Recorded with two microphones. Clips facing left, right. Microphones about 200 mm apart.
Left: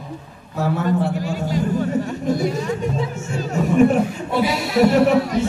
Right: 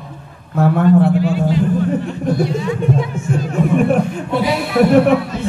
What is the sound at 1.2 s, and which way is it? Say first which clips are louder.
Music: right 7 dB; 45° left (ahead or behind).